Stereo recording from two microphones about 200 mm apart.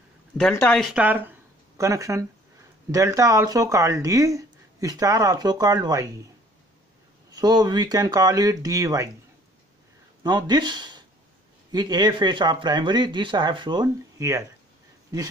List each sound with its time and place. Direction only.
0.4 s speech: 5° left (ahead or behind); by 6.1 s 20° right (ahead or behind)
7.3 s speech: 20° right (ahead or behind)
10.2 s speech: 20° right (ahead or behind)